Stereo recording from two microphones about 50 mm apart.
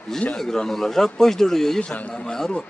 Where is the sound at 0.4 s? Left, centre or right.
Centre.